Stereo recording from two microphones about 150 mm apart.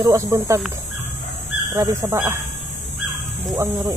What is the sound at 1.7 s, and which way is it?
Speech, 20° right (ahead or behind).